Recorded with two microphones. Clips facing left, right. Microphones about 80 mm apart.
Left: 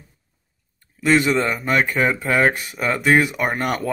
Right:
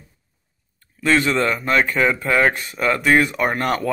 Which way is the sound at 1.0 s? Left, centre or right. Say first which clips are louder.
Even; centre.